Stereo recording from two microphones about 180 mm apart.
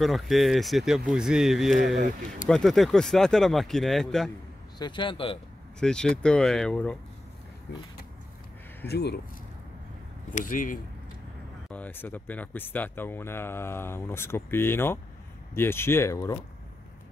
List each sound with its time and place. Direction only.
0.0 s speech: centre (ahead or behind)
4.7 s speech: 25° left (ahead or behind)
5.8 s speech: 5° left (ahead or behind)
8.8 s speech: 65° left (ahead or behind)
10.3 s speech: 50° left (ahead or behind)
11.7 s speech: 10° left (ahead or behind)